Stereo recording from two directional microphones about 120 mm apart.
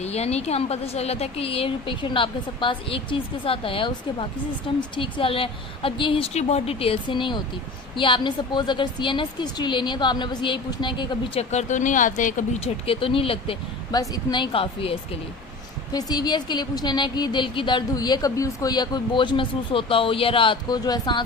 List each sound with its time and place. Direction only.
0.0 s a woman's voice: 60° left (ahead or behind); by 6.3 s 45° left (ahead or behind)
6.3 s a woman's voice: 60° left (ahead or behind); by 11.4 s 40° left (ahead or behind)
11.5 s speech: 90° left; by 13.6 s 50° left (ahead or behind)
13.9 s a woman's voice: 35° left (ahead or behind)
15.9 s a woman's voice: 35° left (ahead or behind)
20.8 s a woman's voice: 35° left (ahead or behind)